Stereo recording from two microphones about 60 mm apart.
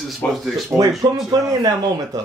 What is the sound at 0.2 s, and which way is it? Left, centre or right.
Speech, left.